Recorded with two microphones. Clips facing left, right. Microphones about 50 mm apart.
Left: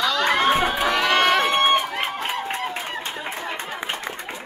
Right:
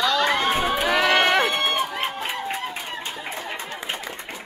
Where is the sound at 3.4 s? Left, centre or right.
Left.